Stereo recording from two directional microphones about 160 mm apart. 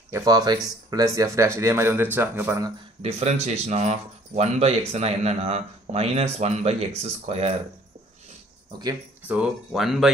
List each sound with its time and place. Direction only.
0.1 s speech: 25° right (ahead or behind)
3.0 s speech: 40° right (ahead or behind)
9.3 s speech: 5° right (ahead or behind)